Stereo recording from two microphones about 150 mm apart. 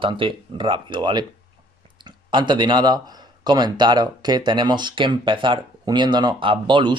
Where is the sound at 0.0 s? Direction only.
35° right (ahead or behind).